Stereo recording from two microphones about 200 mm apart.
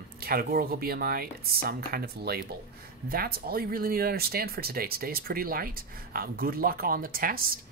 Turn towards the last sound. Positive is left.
turn(degrees=-45)  # may be behind; listen again after turning